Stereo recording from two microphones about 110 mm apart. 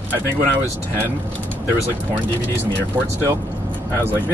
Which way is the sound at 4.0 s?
20° left (ahead or behind).